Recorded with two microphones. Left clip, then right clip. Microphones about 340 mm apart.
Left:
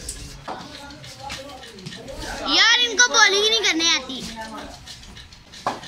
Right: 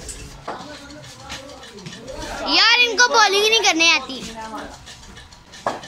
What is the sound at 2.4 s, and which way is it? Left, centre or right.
A child's voice, centre.